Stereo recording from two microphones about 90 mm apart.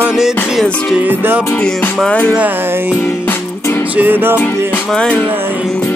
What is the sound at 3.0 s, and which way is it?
Music, 25° left (ahead or behind).